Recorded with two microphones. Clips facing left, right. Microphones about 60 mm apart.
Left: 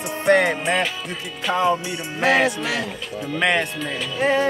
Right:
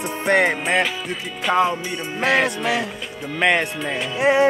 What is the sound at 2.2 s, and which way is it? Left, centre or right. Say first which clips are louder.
Music: left 1 dB; centre.